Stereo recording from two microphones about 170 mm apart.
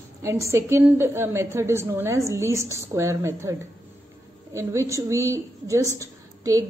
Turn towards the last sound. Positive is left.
turn(degrees=-20)  # may be behind; listen again after turning